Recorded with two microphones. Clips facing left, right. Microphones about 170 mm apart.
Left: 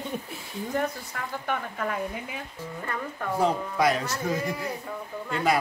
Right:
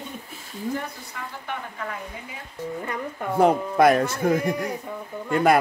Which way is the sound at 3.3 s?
55° right (ahead or behind).